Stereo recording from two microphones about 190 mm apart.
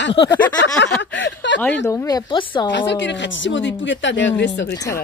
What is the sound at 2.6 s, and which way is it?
Speech, 70° left (ahead or behind).